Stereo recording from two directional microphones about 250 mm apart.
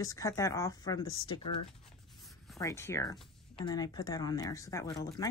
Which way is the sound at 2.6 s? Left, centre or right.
Centre.